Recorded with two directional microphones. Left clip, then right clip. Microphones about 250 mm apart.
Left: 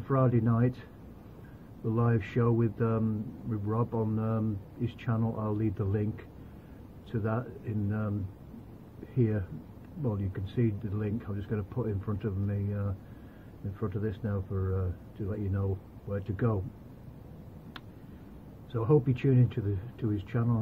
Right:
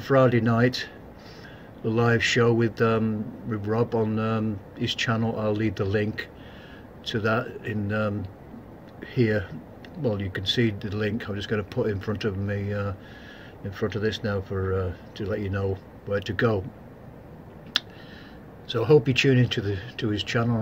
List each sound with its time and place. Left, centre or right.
0.1 s speech: centre
2.0 s speech: centre
9.1 s speech: centre
14.3 s speech: centre
18.7 s speech: centre